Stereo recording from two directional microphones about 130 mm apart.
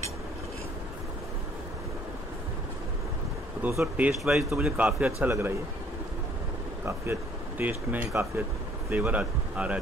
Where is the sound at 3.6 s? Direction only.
15° right (ahead or behind).